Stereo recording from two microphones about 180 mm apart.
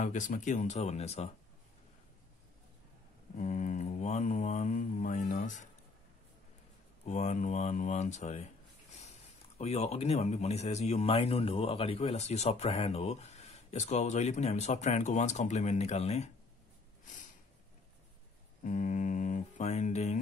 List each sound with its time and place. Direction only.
0.0 s speech: 45° left (ahead or behind)
3.3 s mantra: 45° left (ahead or behind)
7.1 s speech: 40° left (ahead or behind)
9.6 s speech: 35° left (ahead or behind)
18.6 s a sound: 45° left (ahead or behind)